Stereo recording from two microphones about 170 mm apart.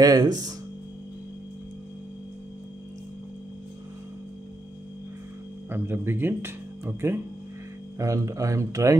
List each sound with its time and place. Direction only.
0.0 s speech: 25° right (ahead or behind)
5.7 s speech: 15° right (ahead or behind)